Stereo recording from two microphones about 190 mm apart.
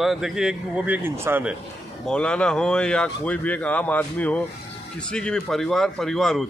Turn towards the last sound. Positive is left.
turn(degrees=0)  # may be behind; listen again after turning